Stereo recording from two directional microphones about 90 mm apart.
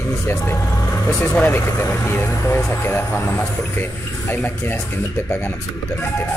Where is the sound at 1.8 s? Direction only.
30° left (ahead or behind).